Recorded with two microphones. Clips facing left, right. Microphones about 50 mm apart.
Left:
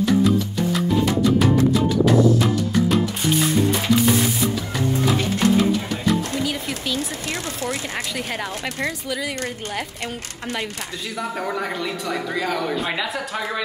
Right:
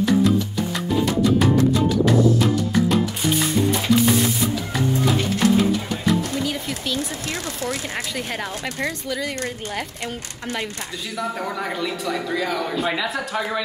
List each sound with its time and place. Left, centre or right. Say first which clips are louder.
0.7 s music: even; centre
5.6 s bird: even; centre
7.2 s speech: even; left
8.2 s speech: even; centre
11.1 s speech: even; centre